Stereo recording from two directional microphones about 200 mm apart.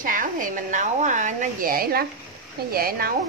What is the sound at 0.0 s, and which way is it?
A woman's voice, 40° right (ahead or behind).